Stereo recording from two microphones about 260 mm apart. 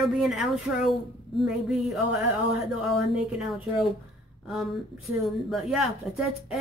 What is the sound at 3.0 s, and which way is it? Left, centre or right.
Speech, centre.